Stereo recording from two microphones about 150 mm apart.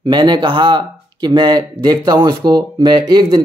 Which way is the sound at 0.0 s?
30° right (ahead or behind).